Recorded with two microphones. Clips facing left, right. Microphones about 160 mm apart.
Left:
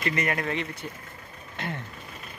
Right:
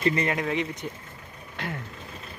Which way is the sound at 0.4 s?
5° right (ahead or behind).